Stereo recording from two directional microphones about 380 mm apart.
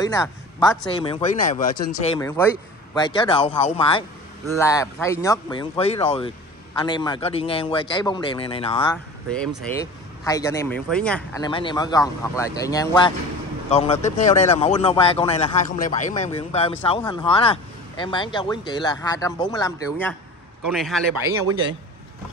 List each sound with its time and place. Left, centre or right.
0.0 s speech: centre
8.9 s a man's voice: centre